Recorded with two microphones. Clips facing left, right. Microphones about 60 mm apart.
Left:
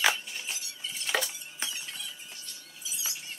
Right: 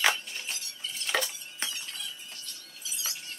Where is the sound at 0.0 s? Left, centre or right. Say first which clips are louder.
Even; centre.